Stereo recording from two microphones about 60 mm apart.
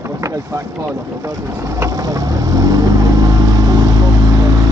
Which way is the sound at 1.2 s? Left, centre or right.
Right.